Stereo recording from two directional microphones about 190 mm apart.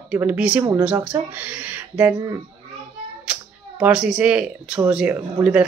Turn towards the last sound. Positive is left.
turn(degrees=-15)  # may be behind; listen again after turning